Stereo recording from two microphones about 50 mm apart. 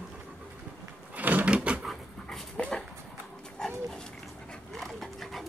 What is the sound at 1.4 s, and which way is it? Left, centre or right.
Drawer open or close, right.